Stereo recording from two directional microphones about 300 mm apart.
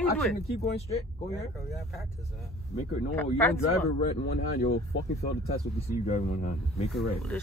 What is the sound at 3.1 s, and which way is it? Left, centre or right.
Speech, centre.